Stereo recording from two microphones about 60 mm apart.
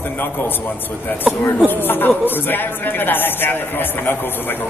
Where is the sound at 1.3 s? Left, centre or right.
Centre.